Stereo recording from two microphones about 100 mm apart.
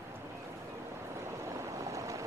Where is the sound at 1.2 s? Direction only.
30° right (ahead or behind).